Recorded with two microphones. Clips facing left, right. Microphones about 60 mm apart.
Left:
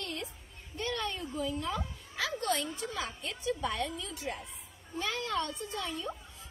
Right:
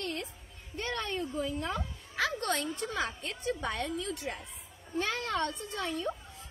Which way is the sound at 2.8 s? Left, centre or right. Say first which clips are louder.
Right 3 dB; right.